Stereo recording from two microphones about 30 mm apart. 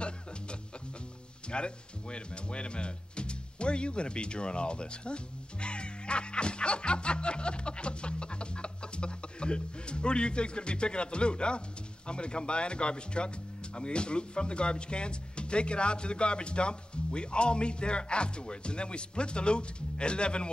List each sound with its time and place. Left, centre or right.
1.5 s speech: left